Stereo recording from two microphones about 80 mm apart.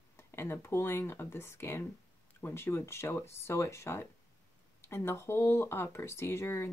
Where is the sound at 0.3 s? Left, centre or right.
Left.